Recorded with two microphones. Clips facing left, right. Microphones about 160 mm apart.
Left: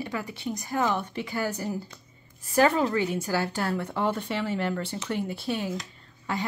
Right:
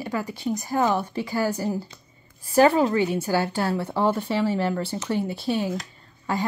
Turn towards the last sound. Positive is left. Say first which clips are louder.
# right 5 dB
turn(degrees=-45)  # may be behind; listen again after turning